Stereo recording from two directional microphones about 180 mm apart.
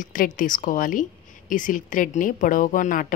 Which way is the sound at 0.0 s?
50° left (ahead or behind).